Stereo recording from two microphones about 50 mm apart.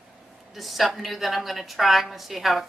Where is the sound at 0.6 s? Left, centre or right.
Centre.